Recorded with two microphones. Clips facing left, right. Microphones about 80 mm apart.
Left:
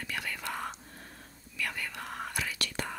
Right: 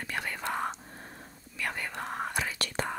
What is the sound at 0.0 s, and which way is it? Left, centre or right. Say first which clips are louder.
Whispering: right 3 dB; right.